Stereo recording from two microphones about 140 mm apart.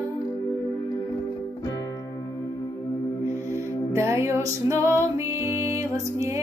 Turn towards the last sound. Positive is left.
turn(degrees=-20)  # may be behind; listen again after turning